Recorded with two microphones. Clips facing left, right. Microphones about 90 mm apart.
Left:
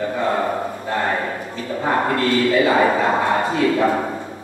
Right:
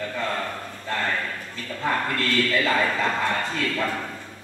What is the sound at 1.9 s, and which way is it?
A man's voice, 25° left (ahead or behind).